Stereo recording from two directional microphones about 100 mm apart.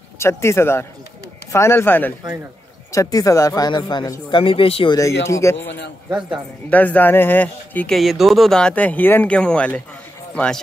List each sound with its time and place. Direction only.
0.2 s speech: 25° left (ahead or behind)
2.9 s speech: 35° left (ahead or behind)
4.3 s speech: 60° left (ahead or behind)
4.9 s speech: 30° left (ahead or behind)
6.7 s speech: 15° left (ahead or behind)
7.9 s speech: centre (ahead or behind)